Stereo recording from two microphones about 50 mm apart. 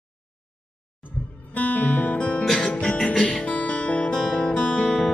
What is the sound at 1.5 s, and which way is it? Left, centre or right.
Guitar, left.